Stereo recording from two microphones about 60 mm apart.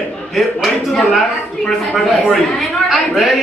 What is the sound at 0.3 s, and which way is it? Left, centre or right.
A man's voice, centre.